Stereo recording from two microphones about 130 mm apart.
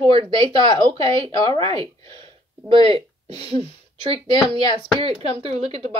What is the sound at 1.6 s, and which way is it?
A woman's voice, 45° right (ahead or behind).